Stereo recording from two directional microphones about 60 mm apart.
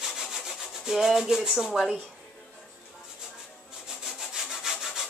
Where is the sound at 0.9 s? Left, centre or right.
Centre.